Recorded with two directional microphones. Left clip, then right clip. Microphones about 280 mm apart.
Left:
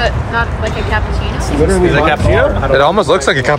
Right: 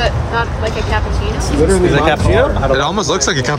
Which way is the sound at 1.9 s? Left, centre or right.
Right.